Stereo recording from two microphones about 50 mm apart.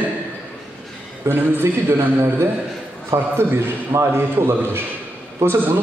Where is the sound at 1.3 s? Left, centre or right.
Right.